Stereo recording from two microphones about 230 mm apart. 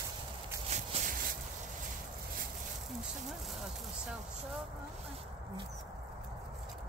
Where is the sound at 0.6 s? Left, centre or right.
Right.